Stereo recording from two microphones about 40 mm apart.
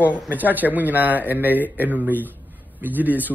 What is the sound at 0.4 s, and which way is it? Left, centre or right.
A man's voice, right.